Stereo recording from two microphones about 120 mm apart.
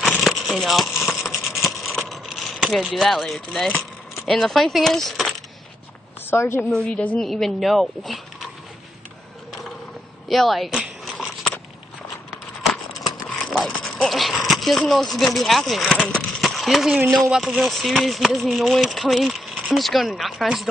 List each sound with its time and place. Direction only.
0.2 s a sound: centre (ahead or behind)
6.3 s a woman's voice: 20° left (ahead or behind)
6.7 s speech: 10° left (ahead or behind)
10.2 s biting: centre (ahead or behind)
13.5 s dog: centre (ahead or behind)
17.1 s speech: centre (ahead or behind)